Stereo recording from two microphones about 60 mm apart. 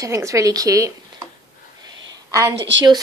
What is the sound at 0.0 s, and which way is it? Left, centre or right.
Speech, right.